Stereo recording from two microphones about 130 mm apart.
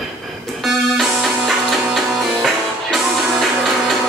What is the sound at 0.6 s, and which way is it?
Music, centre (ahead or behind).